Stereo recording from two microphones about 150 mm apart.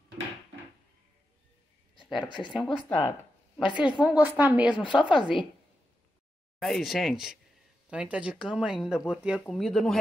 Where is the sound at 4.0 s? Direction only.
10° right (ahead or behind).